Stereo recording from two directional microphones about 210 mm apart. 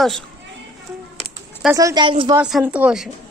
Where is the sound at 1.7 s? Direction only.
20° right (ahead or behind).